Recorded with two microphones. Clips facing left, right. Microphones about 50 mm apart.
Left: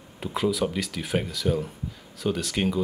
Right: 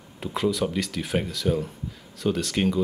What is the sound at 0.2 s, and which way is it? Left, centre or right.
Speech, centre.